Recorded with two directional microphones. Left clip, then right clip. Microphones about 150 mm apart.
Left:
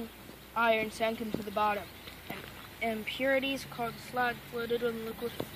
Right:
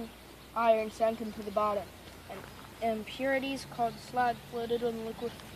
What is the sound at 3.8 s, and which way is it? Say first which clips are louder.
Speech: right 3 dB; 45° right (ahead or behind).